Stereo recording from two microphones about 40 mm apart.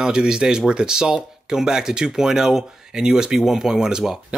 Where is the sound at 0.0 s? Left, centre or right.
Centre.